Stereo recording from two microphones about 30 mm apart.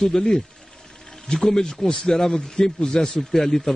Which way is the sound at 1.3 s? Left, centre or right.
Centre.